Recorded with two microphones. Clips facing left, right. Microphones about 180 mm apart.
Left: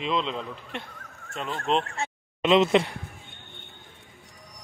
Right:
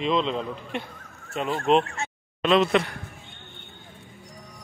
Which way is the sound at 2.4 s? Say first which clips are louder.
Left 1 dB; 20° left (ahead or behind).